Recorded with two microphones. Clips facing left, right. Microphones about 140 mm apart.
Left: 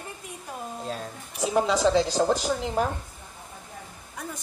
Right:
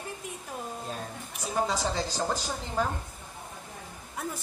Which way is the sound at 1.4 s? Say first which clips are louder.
Left 7 dB; 90° left.